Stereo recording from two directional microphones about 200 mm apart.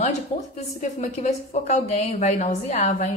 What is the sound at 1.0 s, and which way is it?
A woman's voice, 35° left (ahead or behind).